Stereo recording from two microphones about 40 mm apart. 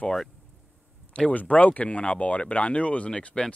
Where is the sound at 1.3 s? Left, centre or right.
Left.